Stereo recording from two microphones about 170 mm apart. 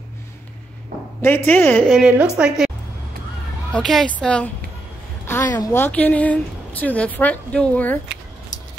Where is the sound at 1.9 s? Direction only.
5° right (ahead or behind).